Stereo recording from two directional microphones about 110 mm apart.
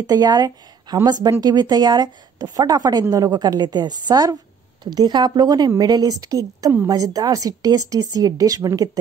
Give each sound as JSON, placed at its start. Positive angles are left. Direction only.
{"t": 0.0, "sound": "a woman's voice", "side_deg": -35}